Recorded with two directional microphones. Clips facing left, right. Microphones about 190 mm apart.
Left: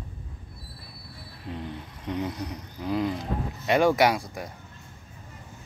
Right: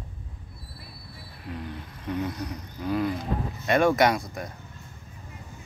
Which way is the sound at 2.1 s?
15° left (ahead or behind).